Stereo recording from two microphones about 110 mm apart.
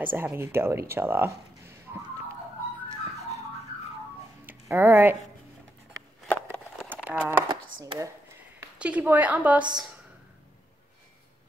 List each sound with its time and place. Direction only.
0.0 s speech: 15° right (ahead or behind)
4.5 s speech: 15° right (ahead or behind)
6.2 s a sound: 15° left (ahead or behind)
7.1 s speech: 15° right (ahead or behind)
7.4 s chopping: 45° right (ahead or behind)
8.7 s a woman's voice: 10° right (ahead or behind)